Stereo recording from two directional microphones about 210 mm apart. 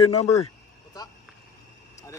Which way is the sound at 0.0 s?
25° left (ahead or behind).